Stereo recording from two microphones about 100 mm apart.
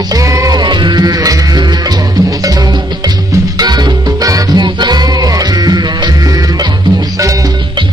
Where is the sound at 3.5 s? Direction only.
45° right (ahead or behind).